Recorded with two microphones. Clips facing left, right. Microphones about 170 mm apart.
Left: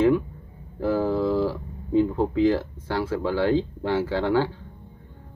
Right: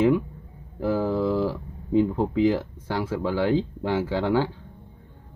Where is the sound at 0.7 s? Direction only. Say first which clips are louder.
Left 1 dB; 10° right (ahead or behind).